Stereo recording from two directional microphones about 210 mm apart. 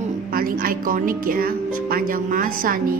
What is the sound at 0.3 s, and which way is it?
A woman's voice, 45° right (ahead or behind).